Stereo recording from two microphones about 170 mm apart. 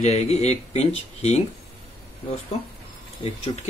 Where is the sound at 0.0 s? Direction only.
40° left (ahead or behind).